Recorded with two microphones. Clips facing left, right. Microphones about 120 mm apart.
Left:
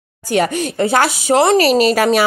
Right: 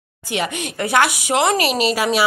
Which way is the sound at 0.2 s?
40° left (ahead or behind).